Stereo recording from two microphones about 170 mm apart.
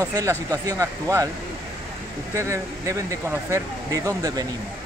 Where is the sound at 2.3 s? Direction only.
15° right (ahead or behind).